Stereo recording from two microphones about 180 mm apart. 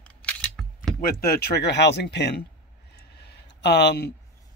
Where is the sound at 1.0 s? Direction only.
55° left (ahead or behind); by 2.2 s 70° left (ahead or behind).